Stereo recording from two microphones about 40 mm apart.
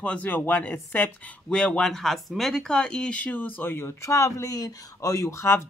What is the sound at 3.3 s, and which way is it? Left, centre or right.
Speech, left.